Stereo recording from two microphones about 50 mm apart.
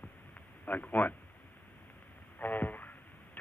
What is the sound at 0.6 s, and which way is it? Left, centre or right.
Speech, left.